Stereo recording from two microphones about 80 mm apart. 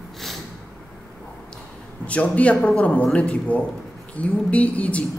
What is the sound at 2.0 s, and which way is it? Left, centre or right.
A woman's voice, centre.